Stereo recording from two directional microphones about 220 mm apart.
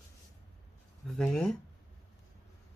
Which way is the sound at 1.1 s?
5° left (ahead or behind).